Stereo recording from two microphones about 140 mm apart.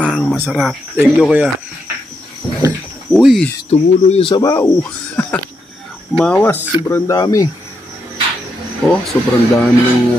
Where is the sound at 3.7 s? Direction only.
45° left (ahead or behind).